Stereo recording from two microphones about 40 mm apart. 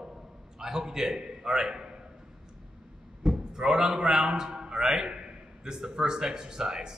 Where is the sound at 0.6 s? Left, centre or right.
Centre.